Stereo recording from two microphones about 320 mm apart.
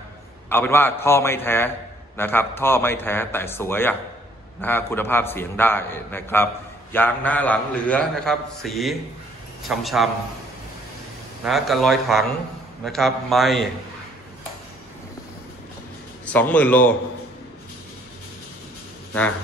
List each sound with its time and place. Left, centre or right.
0.5 s a man's voice: centre
11.4 s a man's voice: centre
16.3 s a man's voice: centre